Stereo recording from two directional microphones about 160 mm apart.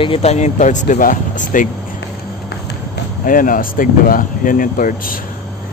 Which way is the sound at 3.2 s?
60° left (ahead or behind).